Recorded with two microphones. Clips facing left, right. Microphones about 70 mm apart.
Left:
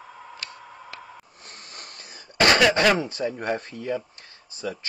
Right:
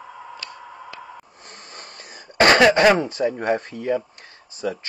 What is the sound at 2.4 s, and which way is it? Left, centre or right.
Speech, right.